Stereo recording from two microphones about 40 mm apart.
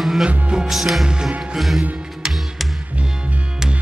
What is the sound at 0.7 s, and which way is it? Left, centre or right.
Music, centre.